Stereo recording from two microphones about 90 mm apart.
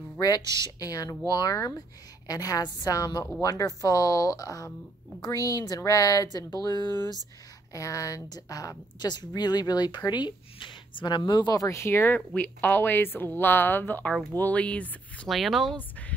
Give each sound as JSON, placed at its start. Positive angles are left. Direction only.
{"t": 0.4, "sound": "a woman's voice", "side_deg": -40}
{"t": 0.7, "sound": "a woman's voice", "side_deg": 40}
{"t": 7.7, "sound": "a woman's voice", "side_deg": 40}
{"t": 15.2, "sound": "speech", "side_deg": 0}